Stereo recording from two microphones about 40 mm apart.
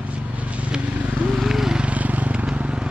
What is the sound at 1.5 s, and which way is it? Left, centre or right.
Vehicle, centre.